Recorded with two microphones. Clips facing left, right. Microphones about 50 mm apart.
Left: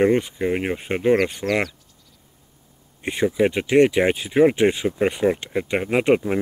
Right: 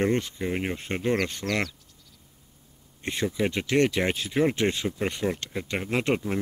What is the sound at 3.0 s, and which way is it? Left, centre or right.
Speech, centre.